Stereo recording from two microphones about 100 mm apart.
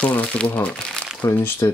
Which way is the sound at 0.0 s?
15° left (ahead or behind).